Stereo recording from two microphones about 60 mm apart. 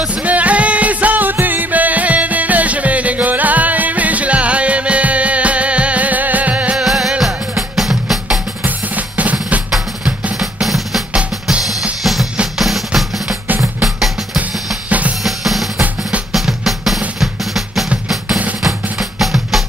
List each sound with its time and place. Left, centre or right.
0.0 s music: right
6.8 s music: centre
8.6 s drum: right
10.4 s drum: centre
14.9 s drum kit: right
15.2 s drum: centre